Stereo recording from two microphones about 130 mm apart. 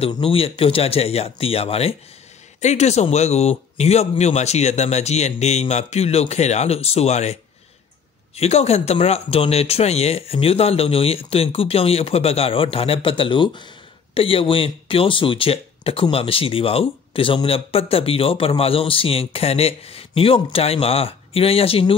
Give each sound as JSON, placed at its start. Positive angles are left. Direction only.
{"t": 0.2, "sound": "speech", "side_deg": 45}
{"t": 2.6, "sound": "speech", "side_deg": 60}
{"t": 8.4, "sound": "speech", "side_deg": 55}